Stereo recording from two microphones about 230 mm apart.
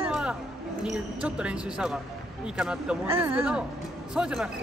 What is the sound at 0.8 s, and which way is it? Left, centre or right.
Speech, centre.